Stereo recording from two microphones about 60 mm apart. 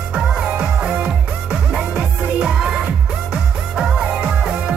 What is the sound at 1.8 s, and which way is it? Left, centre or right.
Music, centre.